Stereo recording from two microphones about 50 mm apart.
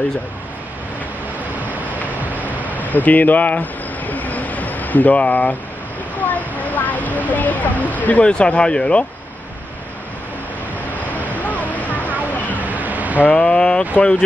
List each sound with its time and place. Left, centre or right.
2.2 s a sound: right
2.7 s vehicle: left
6.2 s speech: left
8.3 s speech: centre
11.0 s waterfall: left
12.3 s a sound: left
12.5 s cat: right
13.3 s speech: centre